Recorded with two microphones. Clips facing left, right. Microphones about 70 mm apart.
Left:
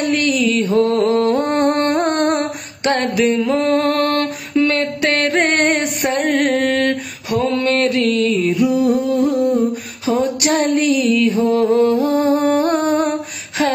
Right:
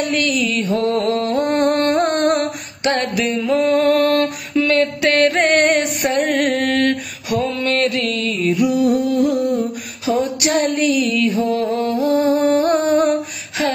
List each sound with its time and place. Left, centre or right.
0.0 s mantra: left
3.5 s music: left
3.9 s a sound: left
4.6 s a sound: left
6.0 s music: left
6.6 s mantra: left
8.6 s a sound: left
11.2 s mantra: left
11.5 s music: left